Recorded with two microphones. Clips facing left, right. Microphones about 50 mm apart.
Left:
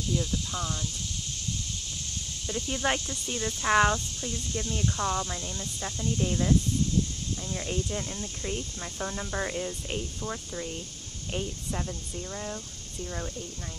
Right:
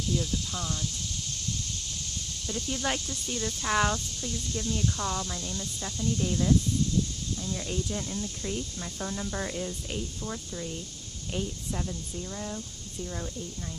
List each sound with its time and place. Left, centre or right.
0.1 s speech: centre
2.4 s speech: centre